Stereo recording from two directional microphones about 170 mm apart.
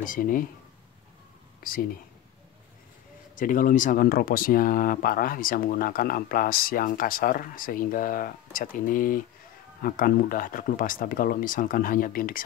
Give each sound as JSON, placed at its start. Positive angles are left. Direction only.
{"t": 0.0, "sound": "speech", "side_deg": 55}
{"t": 1.6, "sound": "speech", "side_deg": 55}
{"t": 3.3, "sound": "speech", "side_deg": 55}